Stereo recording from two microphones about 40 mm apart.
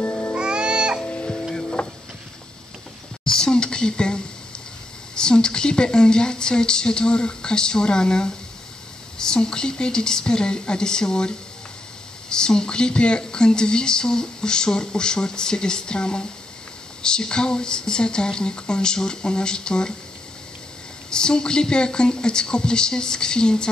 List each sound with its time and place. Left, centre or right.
0.3 s music: right
1.0 s music: left
1.5 s printer: centre
3.3 s a sound: centre
5.1 s speech: centre
21.1 s speech: centre